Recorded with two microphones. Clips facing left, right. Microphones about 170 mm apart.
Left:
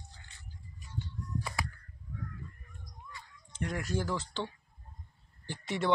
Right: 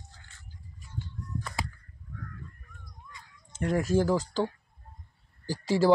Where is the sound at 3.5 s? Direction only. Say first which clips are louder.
Right 9 dB; 45° right (ahead or behind).